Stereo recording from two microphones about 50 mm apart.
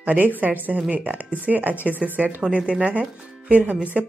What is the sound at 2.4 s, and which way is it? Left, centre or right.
Speech, centre.